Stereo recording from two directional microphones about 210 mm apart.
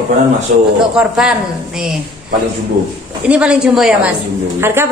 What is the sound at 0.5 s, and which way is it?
Speech, 35° right (ahead or behind).